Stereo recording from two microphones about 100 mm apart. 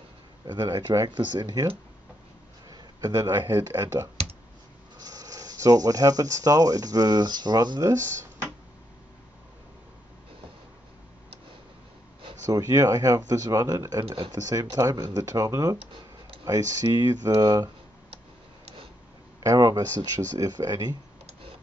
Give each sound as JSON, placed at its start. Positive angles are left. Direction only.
{"t": 0.5, "sound": "speech", "side_deg": -45}
{"t": 2.7, "sound": "a sound", "side_deg": -35}
{"t": 3.4, "sound": "speech", "side_deg": -40}
{"t": 4.9, "sound": "speech", "side_deg": -40}
{"t": 12.4, "sound": "speech", "side_deg": -35}
{"t": 14.0, "sound": "speech", "side_deg": -55}
{"t": 14.3, "sound": "speech", "side_deg": -35}
{"t": 19.4, "sound": "speech", "side_deg": -35}